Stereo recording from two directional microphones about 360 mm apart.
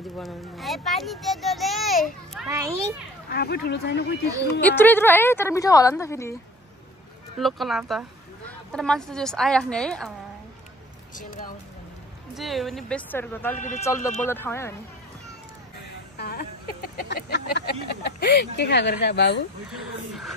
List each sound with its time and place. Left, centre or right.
0.2 s a child's voice: centre
3.3 s speech: left
4.6 s a woman's voice: centre
7.3 s a child's voice: centre
11.1 s speech: left
12.4 s a child's voice: centre
13.6 s speech: left
13.8 s a woman's voice: centre
16.2 s a sound: left